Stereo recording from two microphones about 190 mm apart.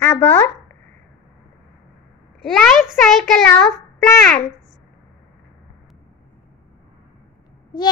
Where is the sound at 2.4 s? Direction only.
Centre (ahead or behind).